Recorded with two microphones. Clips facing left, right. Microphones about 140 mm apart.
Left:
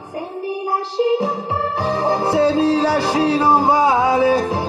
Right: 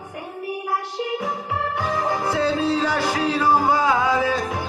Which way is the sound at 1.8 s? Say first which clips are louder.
Left 6 dB; 35° left (ahead or behind).